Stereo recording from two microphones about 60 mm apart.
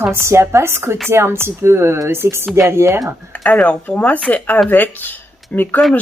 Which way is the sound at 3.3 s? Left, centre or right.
Left.